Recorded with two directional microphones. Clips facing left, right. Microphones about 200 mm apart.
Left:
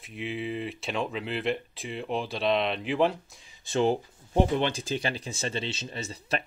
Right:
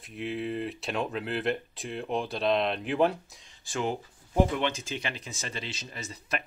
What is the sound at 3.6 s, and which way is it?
Speech, 30° left (ahead or behind).